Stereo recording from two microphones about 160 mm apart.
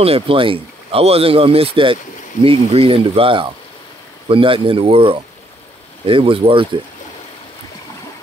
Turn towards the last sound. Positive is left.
turn(degrees=-35)  # may be behind; listen again after turning